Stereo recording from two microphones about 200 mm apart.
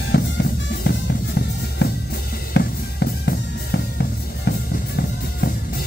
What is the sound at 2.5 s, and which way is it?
Drum, 55° left (ahead or behind).